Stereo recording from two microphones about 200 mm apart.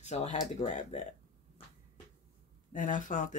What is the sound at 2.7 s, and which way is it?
Speech, 40° left (ahead or behind).